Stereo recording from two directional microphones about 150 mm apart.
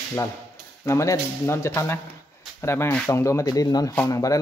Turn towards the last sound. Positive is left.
turn(degrees=20)  # may be behind; listen again after turning